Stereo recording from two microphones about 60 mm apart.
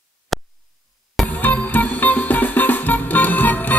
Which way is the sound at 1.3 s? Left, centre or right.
Left.